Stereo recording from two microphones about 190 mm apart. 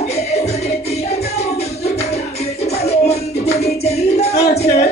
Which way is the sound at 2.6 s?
35° left (ahead or behind).